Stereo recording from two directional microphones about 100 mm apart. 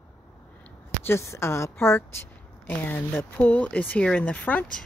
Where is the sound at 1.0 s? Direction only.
30° left (ahead or behind).